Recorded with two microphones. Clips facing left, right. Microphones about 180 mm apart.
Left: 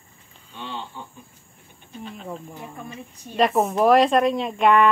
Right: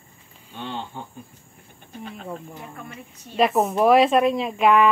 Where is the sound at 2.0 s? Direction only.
50° right (ahead or behind).